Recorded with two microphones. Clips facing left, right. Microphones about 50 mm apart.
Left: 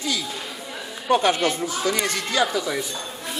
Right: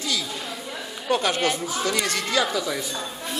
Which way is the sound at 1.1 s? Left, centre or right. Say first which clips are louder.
Left 3 dB; centre.